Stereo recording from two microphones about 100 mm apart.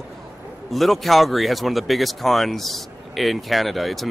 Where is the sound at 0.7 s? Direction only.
Centre (ahead or behind).